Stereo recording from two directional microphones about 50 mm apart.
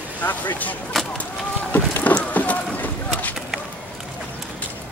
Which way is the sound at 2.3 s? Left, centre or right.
Left.